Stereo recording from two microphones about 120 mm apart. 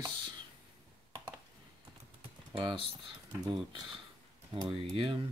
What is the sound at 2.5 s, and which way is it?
Speech, 45° right (ahead or behind).